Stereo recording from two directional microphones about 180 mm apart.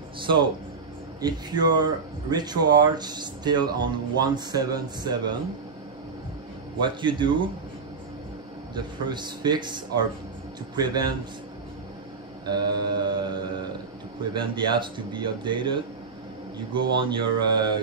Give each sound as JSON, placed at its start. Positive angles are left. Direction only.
{"t": 1.2, "sound": "speech", "side_deg": -20}
{"t": 6.8, "sound": "speech", "side_deg": -25}
{"t": 8.7, "sound": "speech", "side_deg": -25}
{"t": 12.4, "sound": "speech", "side_deg": -25}